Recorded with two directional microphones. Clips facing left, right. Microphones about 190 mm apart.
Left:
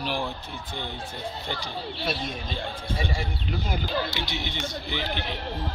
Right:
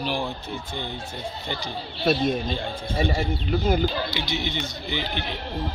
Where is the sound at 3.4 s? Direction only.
45° right (ahead or behind).